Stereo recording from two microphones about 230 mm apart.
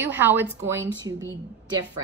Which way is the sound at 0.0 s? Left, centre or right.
Centre.